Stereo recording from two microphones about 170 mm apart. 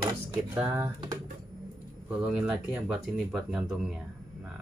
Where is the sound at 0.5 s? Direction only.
15° right (ahead or behind).